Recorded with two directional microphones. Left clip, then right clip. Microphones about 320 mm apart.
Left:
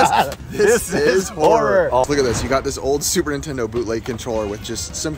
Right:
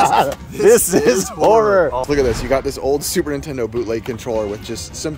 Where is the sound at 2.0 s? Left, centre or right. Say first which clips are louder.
Right 2 dB; centre.